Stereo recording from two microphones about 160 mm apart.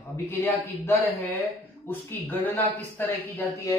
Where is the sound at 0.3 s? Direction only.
15° left (ahead or behind).